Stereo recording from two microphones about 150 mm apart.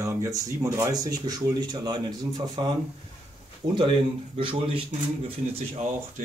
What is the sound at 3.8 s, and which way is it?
Speech, 35° right (ahead or behind).